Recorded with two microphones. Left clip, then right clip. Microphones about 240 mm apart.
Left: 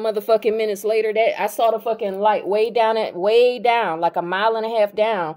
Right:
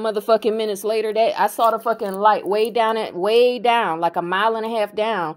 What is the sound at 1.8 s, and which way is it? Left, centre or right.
Speech, right.